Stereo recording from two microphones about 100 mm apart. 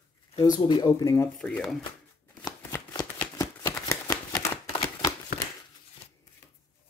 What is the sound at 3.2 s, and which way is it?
Shuffling cards, 45° left (ahead or behind).